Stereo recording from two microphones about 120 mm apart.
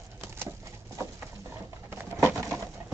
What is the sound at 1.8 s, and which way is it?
Pigeon, 20° right (ahead or behind).